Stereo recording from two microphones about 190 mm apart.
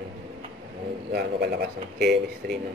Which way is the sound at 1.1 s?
55° right (ahead or behind).